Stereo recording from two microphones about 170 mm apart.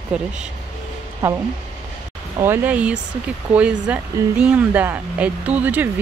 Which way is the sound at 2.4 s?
10° right (ahead or behind).